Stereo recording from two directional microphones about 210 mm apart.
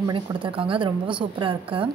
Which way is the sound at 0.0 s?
25° right (ahead or behind).